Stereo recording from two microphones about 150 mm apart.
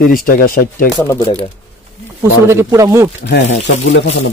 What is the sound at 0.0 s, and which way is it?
Speech, 70° left (ahead or behind).